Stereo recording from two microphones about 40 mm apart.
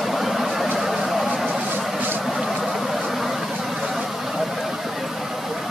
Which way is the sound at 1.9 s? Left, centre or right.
Right.